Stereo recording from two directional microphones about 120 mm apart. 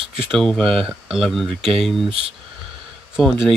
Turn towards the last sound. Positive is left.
turn(degrees=-5)  # may be behind; listen again after turning